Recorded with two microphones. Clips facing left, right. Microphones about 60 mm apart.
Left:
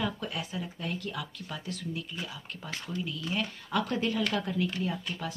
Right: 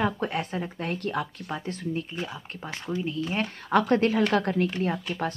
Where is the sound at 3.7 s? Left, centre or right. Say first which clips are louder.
Right 8 dB; right.